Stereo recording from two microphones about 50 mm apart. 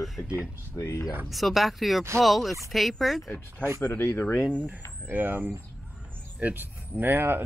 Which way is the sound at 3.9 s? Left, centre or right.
Left.